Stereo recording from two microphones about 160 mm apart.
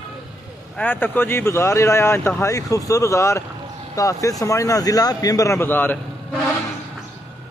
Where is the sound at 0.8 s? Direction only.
10° left (ahead or behind).